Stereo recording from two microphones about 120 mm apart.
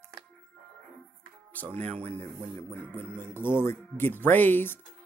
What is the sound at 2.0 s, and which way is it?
Speech, 65° right (ahead or behind).